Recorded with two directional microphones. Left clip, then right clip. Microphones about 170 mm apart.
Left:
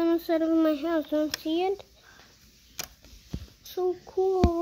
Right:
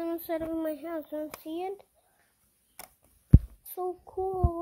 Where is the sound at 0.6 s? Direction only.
20° left (ahead or behind).